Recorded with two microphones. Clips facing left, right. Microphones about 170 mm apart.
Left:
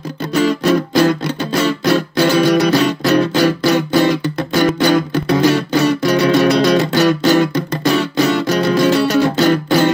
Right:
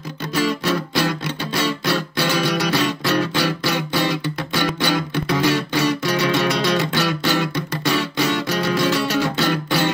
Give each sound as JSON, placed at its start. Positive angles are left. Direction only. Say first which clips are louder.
{"t": 0.3, "sound": "music", "louder": "left 7 dB", "side_deg": 40}
{"t": 2.5, "sound": "music", "louder": "left 8 dB", "side_deg": 55}
{"t": 3.0, "sound": "music", "louder": "left 7 dB", "side_deg": 45}
{"t": 4.0, "sound": "music", "louder": "left 7 dB", "side_deg": 40}
{"t": 5.8, "sound": "music", "louder": "left 6 dB", "side_deg": 55}
{"t": 6.2, "sound": "music", "louder": "left 8 dB", "side_deg": 40}